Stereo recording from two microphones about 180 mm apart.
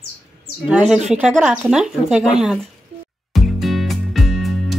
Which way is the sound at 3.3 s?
Centre (ahead or behind).